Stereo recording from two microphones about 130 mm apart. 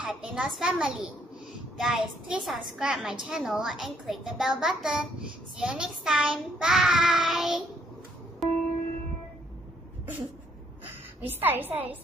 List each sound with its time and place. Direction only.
0.0 s child singing: 5° right (ahead or behind)
8.4 s music: centre (ahead or behind)
11.2 s a woman's voice: 15° right (ahead or behind)